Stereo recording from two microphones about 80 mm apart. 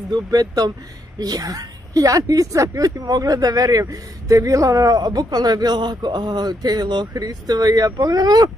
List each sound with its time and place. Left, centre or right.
0.1 s a man's voice: right